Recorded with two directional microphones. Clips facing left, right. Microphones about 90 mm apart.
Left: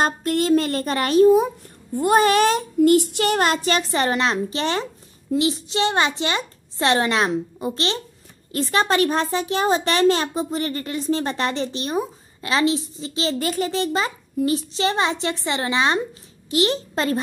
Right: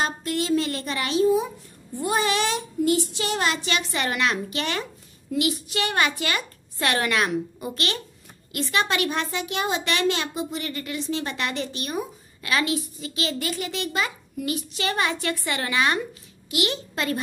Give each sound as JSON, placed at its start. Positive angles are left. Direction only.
{"t": 0.0, "sound": "child singing", "side_deg": 45}
{"t": 5.3, "sound": "a woman's voice", "side_deg": 30}